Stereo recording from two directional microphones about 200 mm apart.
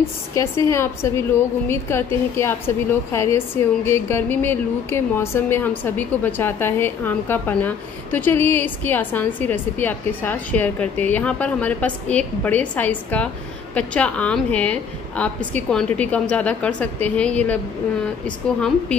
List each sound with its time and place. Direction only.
0.3 s a woman's voice: 15° left (ahead or behind)